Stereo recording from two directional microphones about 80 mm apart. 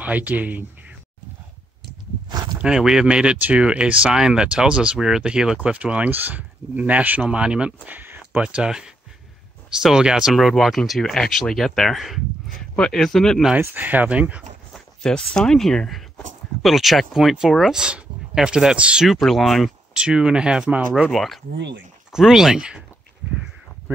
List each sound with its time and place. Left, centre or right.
0.0 s speech: centre
2.2 s a sound: right
2.6 s speech: centre
13.6 s speech: right
14.7 s speech: centre
19.0 s speech: centre
20.0 s speech: centre
21.1 s speech: centre